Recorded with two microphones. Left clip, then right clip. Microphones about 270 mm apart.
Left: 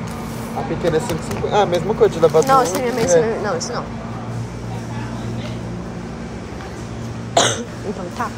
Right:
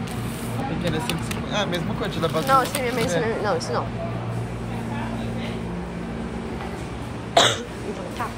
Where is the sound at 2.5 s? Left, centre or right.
Centre.